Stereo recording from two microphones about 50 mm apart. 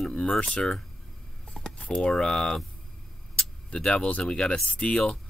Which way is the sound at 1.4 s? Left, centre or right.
Centre.